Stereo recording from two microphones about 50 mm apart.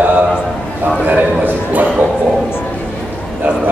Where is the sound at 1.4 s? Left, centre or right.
Right.